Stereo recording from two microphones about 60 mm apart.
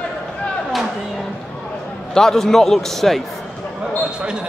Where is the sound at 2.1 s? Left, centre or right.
Centre.